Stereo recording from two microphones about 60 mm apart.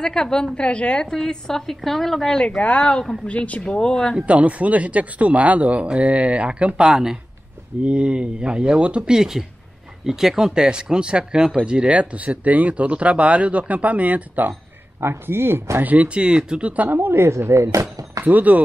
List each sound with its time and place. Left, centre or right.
0.0 s a woman's voice: centre
2.4 s a woman's voice: centre
3.6 s a woman's voice: centre
4.3 s speech: right
15.0 s speech: right
15.8 s speech: right
17.6 s a sound: right
18.2 s speech: right